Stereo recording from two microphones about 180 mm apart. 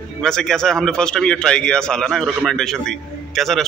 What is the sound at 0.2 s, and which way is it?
A man's voice, 5° left (ahead or behind).